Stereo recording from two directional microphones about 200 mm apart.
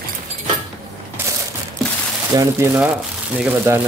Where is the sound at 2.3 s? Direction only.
15° right (ahead or behind).